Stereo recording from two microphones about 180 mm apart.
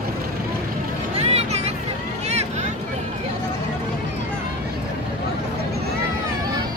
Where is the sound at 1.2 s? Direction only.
35° right (ahead or behind).